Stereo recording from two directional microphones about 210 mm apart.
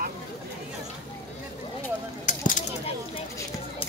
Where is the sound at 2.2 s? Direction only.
40° left (ahead or behind).